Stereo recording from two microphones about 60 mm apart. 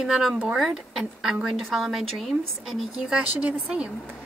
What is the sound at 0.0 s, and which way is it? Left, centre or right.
A woman's voice, centre.